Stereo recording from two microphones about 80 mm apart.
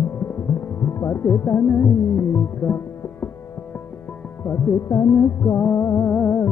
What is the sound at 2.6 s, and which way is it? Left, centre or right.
Music, left.